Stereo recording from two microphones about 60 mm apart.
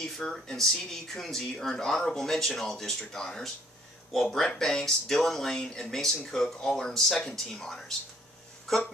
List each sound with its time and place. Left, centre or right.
0.0 s speech: centre